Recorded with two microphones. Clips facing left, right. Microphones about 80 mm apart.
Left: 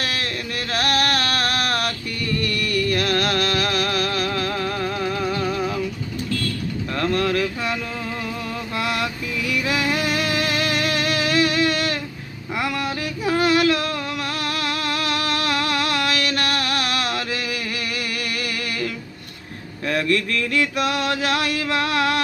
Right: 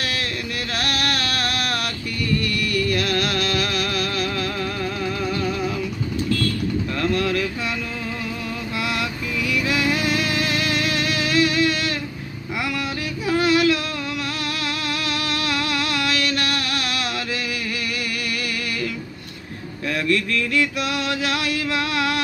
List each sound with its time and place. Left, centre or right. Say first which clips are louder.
0.0 s music: even; left
0.7 s a sound: left 4 dB; left
2.4 s music: even; left
7.0 s boat: left 2 dB; left
8.8 s music: left 1 dB; left
13.3 s female singing: even; left
14.6 s music: left 2 dB; left
19.9 s mantra: left 1 dB; left